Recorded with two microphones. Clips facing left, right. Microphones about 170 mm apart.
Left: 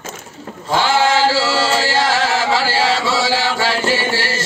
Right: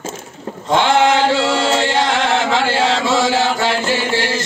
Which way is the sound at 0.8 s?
Centre (ahead or behind).